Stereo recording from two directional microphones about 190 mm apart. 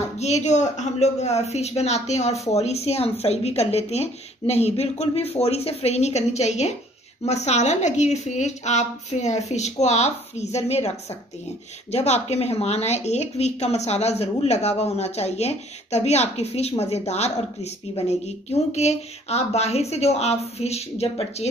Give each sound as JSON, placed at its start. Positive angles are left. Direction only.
{"t": 0.2, "sound": "a woman's voice", "side_deg": 35}